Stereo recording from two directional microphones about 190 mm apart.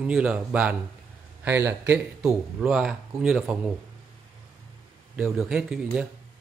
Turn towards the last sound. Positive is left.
turn(degrees=-5)  # may be behind; listen again after turning